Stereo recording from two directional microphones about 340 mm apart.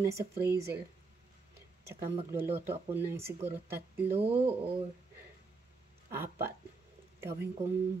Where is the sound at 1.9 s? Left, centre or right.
Centre.